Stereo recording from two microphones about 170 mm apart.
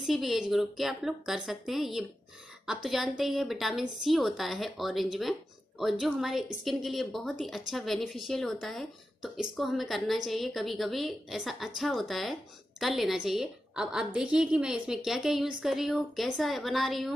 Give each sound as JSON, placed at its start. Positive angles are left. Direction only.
{"t": 0.0, "sound": "speech", "side_deg": 0}